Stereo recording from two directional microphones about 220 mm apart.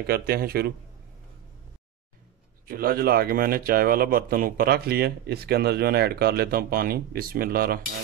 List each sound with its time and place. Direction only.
0.0 s speech: 45° right (ahead or behind)
2.6 s speech: 40° right (ahead or behind)